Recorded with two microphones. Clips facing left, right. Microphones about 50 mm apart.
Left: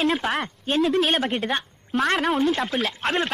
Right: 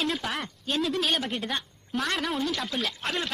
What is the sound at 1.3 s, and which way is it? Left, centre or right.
Speech, left.